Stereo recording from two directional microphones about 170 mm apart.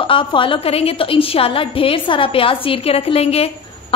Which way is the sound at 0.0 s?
30° left (ahead or behind).